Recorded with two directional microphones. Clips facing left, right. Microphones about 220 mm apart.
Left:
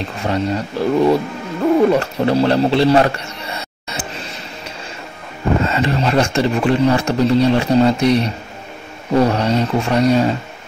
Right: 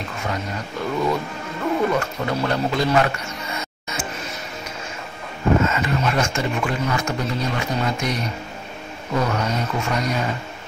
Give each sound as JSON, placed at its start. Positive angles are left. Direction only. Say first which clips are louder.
{"t": 0.2, "sound": "speech", "louder": "left 10 dB", "side_deg": 35}
{"t": 5.6, "sound": "speech", "louder": "left 4 dB", "side_deg": 35}